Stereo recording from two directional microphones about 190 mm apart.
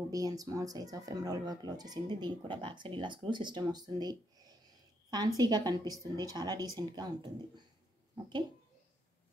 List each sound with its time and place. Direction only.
0.1 s speech: 20° right (ahead or behind)